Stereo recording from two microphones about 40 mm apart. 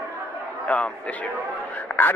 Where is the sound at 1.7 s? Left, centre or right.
Left.